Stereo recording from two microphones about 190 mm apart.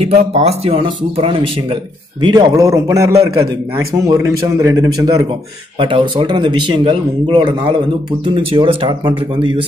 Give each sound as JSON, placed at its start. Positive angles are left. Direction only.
{"t": 0.0, "sound": "speech", "side_deg": -35}
{"t": 2.2, "sound": "a man's voice", "side_deg": -20}